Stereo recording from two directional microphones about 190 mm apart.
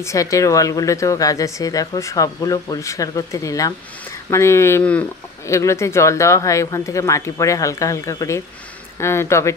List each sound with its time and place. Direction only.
0.0 s speech: 15° left (ahead or behind)